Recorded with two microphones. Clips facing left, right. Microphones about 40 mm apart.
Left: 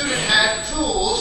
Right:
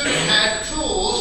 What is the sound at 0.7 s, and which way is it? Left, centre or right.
Speech, centre.